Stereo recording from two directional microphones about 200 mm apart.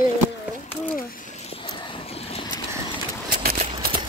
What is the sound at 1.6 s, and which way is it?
Vehicle, 25° left (ahead or behind).